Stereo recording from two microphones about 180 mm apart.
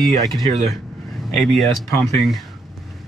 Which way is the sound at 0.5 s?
35° right (ahead or behind).